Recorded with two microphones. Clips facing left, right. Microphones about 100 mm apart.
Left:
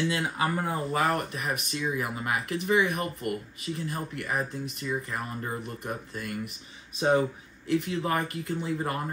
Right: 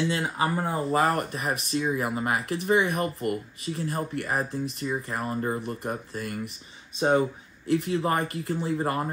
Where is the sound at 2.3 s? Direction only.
Centre (ahead or behind).